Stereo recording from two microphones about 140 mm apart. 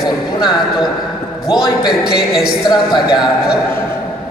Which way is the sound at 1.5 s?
30° left (ahead or behind).